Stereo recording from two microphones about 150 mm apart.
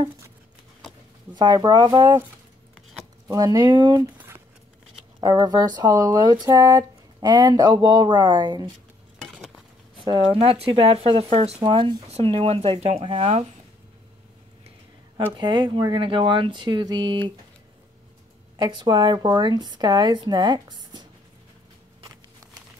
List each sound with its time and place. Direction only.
1.3 s speech: 25° right (ahead or behind)
3.3 s speech: 25° right (ahead or behind)
5.2 s speech: 25° right (ahead or behind)
10.0 s speech: 35° right (ahead or behind)
15.3 s speech: 30° right (ahead or behind)
18.6 s speech: 30° right (ahead or behind)